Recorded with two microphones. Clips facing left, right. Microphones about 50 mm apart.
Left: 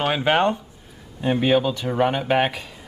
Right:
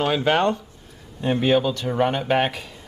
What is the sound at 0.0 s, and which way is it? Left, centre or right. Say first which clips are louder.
Speech: even; centre.